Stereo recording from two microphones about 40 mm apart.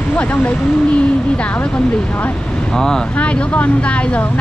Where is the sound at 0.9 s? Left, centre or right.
Left.